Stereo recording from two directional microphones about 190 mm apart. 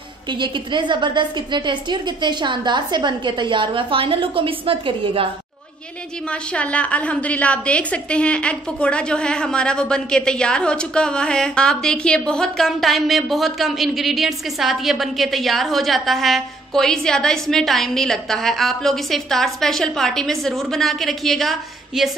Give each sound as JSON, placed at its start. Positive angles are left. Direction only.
{"t": 0.3, "sound": "a woman's voice", "side_deg": -25}
{"t": 6.3, "sound": "a woman's voice", "side_deg": 5}